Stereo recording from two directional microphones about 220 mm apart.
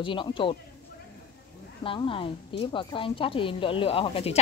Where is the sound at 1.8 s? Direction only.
25° left (ahead or behind).